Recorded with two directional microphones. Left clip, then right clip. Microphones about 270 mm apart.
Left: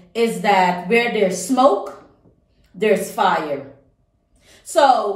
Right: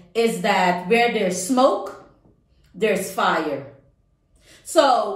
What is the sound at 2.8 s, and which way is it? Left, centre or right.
Speech, centre.